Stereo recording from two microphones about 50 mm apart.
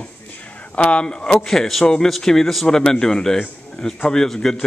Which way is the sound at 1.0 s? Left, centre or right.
Centre.